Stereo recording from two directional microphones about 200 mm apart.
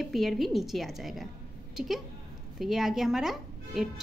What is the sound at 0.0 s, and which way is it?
Speech, centre (ahead or behind).